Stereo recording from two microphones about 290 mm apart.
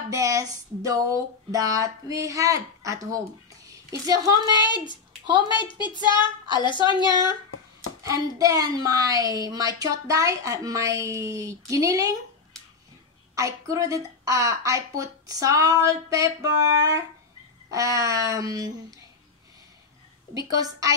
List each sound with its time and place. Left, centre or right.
0.1 s a woman's voice: centre
4.5 s a woman's voice: centre
8.0 s a woman's voice: centre
13.3 s a woman's voice: centre